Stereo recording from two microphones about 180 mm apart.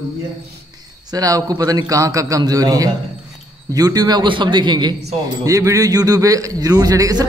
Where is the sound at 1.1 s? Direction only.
20° right (ahead or behind).